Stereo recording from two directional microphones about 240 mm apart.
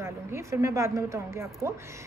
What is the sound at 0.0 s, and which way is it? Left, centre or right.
Speech, centre.